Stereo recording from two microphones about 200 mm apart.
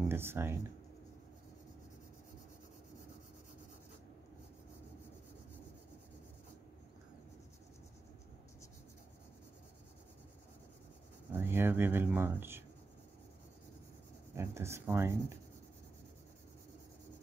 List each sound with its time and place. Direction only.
0.1 s speech: 10° right (ahead or behind)
11.3 s speech: 10° right (ahead or behind)
14.3 s speech: 15° right (ahead or behind)